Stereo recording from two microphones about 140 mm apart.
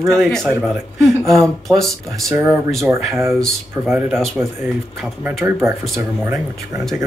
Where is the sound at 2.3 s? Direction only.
20° right (ahead or behind).